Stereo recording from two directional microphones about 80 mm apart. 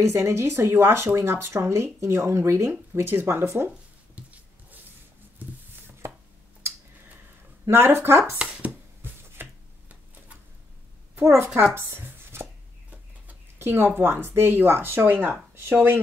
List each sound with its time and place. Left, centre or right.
0.0 s speech: right
4.1 s a sound: right
7.6 s speech: right
8.4 s a sound: centre
11.1 s speech: right
13.6 s speech: right